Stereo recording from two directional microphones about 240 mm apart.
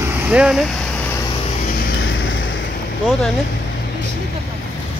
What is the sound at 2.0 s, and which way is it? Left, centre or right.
Vehicle, left.